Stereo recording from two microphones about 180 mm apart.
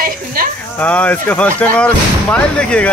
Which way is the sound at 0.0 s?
55° right (ahead or behind).